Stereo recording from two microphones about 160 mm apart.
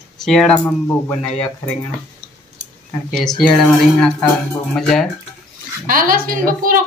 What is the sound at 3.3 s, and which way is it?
Speech, 5° left (ahead or behind).